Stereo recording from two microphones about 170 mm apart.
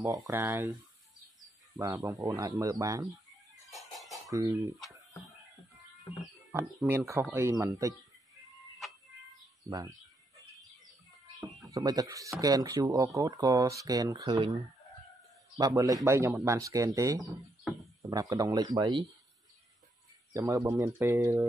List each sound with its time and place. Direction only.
0.3 s speech: 15° right (ahead or behind)
1.8 s speech: 20° right (ahead or behind)
4.3 s speech: 20° right (ahead or behind)
6.5 s speech: 15° right (ahead or behind)
9.7 s bird: 20° right (ahead or behind)
11.7 s speech: 20° right (ahead or behind)
20.3 s speech: 15° right (ahead or behind)